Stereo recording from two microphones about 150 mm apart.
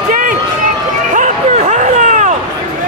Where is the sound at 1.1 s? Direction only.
60° right (ahead or behind).